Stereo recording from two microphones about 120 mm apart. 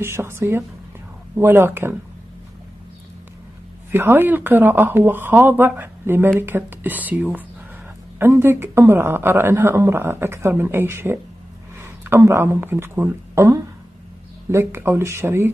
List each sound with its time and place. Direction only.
0.0 s a woman's voice: 20° right (ahead or behind)
3.9 s a woman's voice: 20° right (ahead or behind)